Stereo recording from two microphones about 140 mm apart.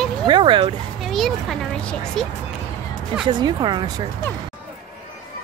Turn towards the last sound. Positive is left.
turn(degrees=-30)  # may be behind; listen again after turning